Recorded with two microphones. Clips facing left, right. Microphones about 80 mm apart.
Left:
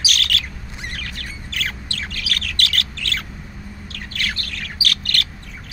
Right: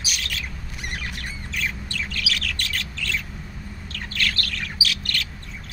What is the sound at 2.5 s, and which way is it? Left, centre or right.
Bird, left.